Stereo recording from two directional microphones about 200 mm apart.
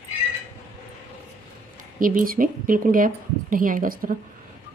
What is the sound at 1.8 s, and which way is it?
Speech, 45° right (ahead or behind).